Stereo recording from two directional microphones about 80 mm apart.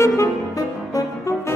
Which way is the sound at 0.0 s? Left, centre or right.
Left.